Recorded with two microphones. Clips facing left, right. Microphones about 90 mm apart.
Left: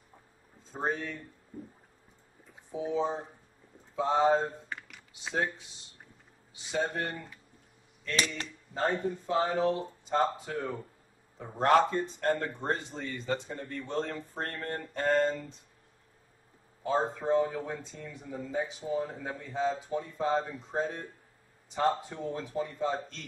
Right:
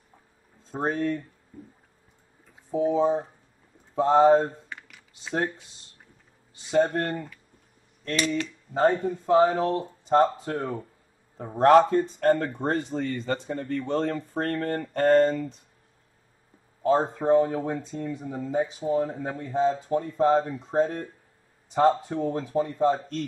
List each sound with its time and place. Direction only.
0.7 s speech: 55° right (ahead or behind)
2.7 s speech: 50° right (ahead or behind)
4.6 s computer keyboard: centre (ahead or behind)
6.7 s speech: 55° right (ahead or behind)
8.7 s a man's voice: 50° right (ahead or behind)
15.0 s speech: 45° right (ahead or behind)
16.8 s speech: 50° right (ahead or behind)